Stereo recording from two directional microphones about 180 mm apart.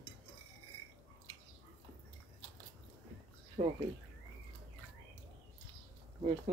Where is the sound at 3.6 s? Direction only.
30° right (ahead or behind).